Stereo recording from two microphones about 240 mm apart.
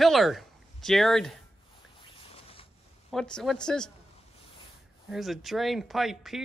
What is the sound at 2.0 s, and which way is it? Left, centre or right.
Rodents, left.